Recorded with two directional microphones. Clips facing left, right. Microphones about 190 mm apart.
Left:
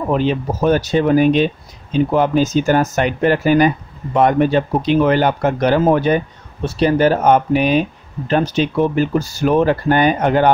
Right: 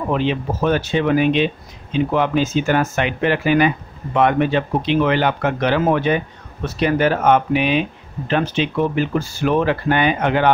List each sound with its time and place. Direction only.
0.1 s speech: 40° left (ahead or behind)